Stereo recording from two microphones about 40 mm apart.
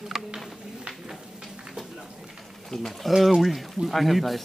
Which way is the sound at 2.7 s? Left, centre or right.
Centre.